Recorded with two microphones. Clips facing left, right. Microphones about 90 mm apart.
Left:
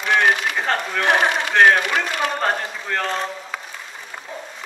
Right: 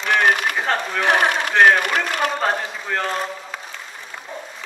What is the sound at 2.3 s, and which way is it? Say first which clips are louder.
Speech: even; centre (ahead or behind).